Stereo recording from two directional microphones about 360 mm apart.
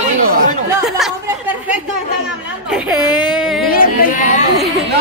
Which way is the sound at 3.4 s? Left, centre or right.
Centre.